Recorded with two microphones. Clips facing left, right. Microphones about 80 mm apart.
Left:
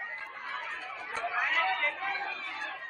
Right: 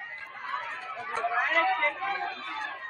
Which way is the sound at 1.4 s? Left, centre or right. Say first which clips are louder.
Right 4 dB; right.